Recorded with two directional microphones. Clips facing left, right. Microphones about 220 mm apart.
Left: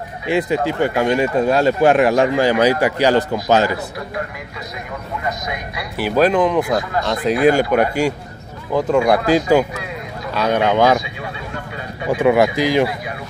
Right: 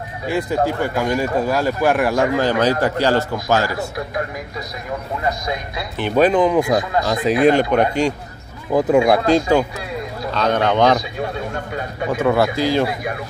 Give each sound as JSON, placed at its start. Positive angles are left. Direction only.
{"t": 0.3, "sound": "speech", "side_deg": 20}
{"t": 5.9, "sound": "speech", "side_deg": 5}
{"t": 8.7, "sound": "speech", "side_deg": -15}
{"t": 9.0, "sound": "a man's voice", "side_deg": 0}
{"t": 11.0, "sound": "speech", "side_deg": -45}
{"t": 12.1, "sound": "a man's voice", "side_deg": 15}